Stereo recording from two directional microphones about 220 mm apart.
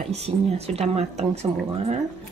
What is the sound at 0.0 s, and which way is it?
A woman's voice, 30° right (ahead or behind).